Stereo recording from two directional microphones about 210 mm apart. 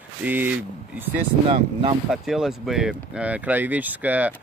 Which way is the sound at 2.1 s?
Centre (ahead or behind).